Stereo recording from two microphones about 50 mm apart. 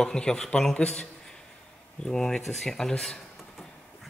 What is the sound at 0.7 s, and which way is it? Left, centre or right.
Speech, left.